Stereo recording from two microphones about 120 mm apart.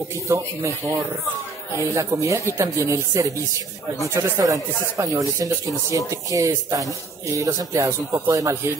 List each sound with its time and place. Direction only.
0.3 s speech: 25° right (ahead or behind)